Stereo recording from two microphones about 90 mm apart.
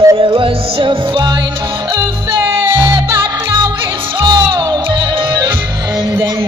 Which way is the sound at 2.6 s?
65° right (ahead or behind).